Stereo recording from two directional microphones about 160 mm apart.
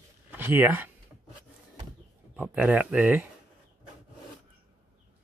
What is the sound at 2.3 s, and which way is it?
Speech, 10° right (ahead or behind).